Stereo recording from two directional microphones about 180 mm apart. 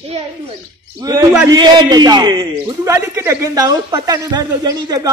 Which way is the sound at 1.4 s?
25° right (ahead or behind).